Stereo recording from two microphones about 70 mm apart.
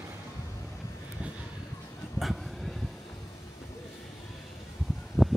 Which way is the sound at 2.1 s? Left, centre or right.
Centre.